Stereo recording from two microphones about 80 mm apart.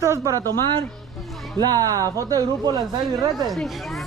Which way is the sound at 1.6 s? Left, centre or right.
Right.